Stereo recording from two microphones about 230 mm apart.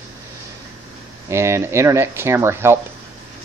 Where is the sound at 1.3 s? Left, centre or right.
Centre.